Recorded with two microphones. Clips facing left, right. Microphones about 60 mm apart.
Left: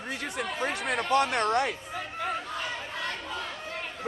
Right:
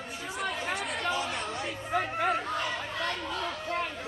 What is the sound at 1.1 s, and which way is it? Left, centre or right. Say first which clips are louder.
Speech: left 8 dB; left.